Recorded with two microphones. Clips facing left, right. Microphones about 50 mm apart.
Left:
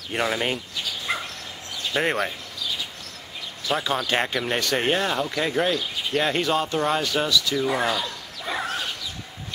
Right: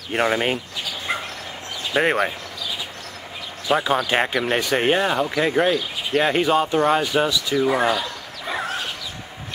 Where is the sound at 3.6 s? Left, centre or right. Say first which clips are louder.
Right 5 dB; centre.